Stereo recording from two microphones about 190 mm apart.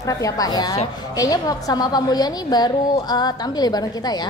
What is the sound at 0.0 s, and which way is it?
A woman's voice, 20° left (ahead or behind).